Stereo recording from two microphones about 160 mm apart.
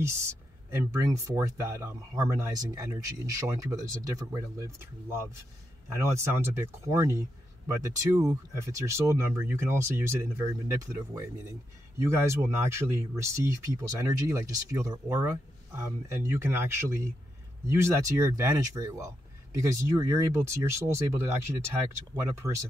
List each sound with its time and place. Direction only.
0.0 s speech: 15° right (ahead or behind)